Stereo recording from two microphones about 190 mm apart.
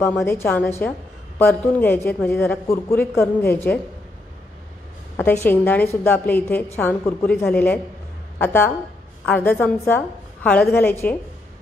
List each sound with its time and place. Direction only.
0.0 s a woman's voice: 15° left (ahead or behind)
5.1 s a woman's voice: 10° left (ahead or behind)